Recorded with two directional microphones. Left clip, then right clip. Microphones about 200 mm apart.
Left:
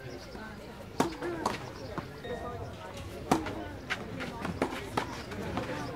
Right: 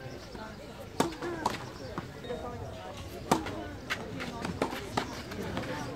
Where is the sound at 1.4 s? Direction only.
25° left (ahead or behind).